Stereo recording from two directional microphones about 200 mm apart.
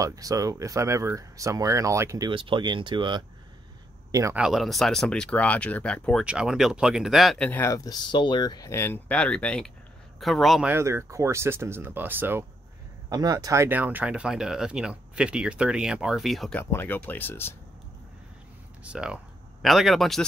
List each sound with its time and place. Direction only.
0.0 s speech: 15° right (ahead or behind)
4.4 s speech: centre (ahead or behind)
10.7 s speech: 15° right (ahead or behind); by 17.6 s 10° left (ahead or behind)
18.9 s speech: 5° right (ahead or behind)